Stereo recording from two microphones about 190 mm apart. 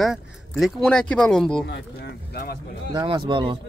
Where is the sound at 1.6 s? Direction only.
60° left (ahead or behind).